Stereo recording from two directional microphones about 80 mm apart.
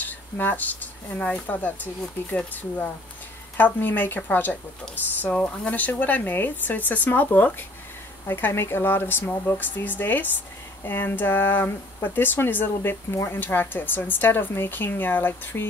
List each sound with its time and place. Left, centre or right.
0.0 s speech: left
5.3 s speech: centre